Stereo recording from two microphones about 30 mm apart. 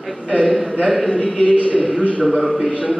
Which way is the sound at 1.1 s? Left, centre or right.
Left.